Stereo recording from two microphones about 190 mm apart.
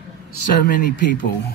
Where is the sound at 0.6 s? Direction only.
45° left (ahead or behind).